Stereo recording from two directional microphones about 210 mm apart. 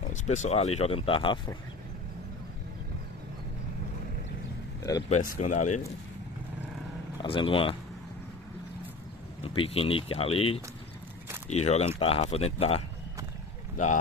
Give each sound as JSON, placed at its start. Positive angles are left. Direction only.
{"t": 0.1, "sound": "speech", "side_deg": 35}
{"t": 5.1, "sound": "speech", "side_deg": 40}
{"t": 7.2, "sound": "speech", "side_deg": 25}
{"t": 9.4, "sound": "speech", "side_deg": 25}